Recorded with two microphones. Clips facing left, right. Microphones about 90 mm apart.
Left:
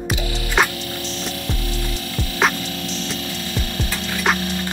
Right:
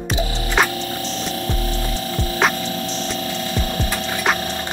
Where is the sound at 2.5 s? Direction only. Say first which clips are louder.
Right 3 dB; 30° right (ahead or behind).